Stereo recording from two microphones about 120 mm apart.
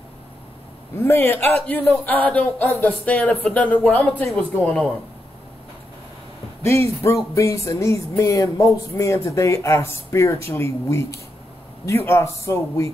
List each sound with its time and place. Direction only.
0.9 s speech: 20° left (ahead or behind)
4.2 s speech: 5° left (ahead or behind)
6.6 s speech: 20° left (ahead or behind)